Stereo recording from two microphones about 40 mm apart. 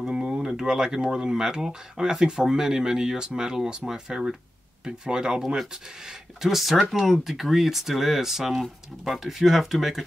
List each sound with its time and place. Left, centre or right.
0.0 s speech: centre
5.6 s speech: centre